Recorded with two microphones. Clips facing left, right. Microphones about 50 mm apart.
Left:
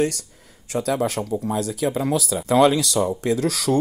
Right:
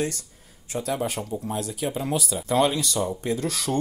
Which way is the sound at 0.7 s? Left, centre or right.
Left.